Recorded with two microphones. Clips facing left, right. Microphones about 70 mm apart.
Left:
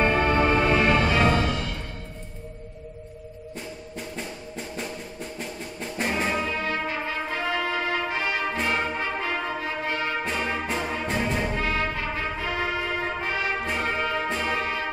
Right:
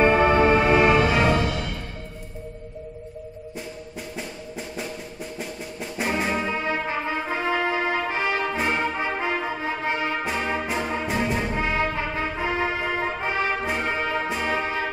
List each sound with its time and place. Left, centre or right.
0.0 s music: centre
5.4 s music: centre
6.4 s brass instrument: right
10.2 s music: centre
11.5 s brass instrument: right